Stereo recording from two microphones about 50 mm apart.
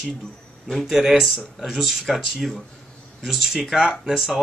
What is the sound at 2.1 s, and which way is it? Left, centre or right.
Speech, centre.